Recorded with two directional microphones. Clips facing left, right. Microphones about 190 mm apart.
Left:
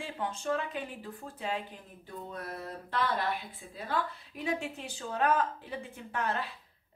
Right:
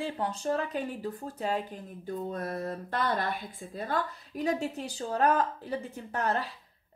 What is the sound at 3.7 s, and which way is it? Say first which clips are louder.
A woman's voice: right 2 dB; 40° right (ahead or behind).